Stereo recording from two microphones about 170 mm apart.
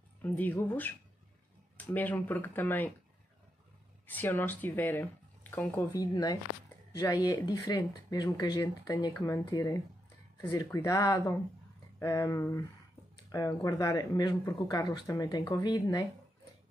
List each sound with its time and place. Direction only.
0.2 s speech: 10° left (ahead or behind)
4.1 s speech: 10° left (ahead or behind)